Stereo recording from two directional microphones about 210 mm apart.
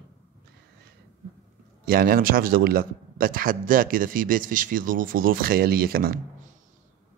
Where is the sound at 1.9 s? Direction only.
45° right (ahead or behind).